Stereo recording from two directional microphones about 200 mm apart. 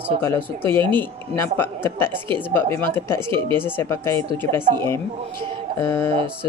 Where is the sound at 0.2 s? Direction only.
10° left (ahead or behind).